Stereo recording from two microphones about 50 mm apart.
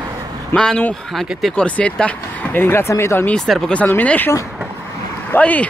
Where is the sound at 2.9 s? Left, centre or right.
Left.